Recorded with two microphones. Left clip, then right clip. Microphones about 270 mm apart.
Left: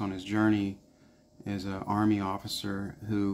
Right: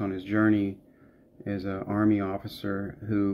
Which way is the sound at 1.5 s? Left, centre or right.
Centre.